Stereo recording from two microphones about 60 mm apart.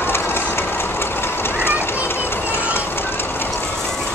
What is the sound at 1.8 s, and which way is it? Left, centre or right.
Children playing, left.